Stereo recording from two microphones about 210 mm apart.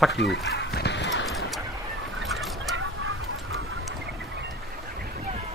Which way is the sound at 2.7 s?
75° right (ahead or behind).